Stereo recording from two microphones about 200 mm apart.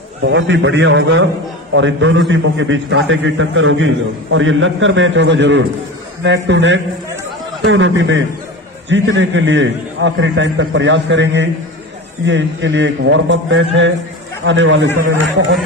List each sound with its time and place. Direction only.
0.2 s a man's voice: 60° right (ahead or behind)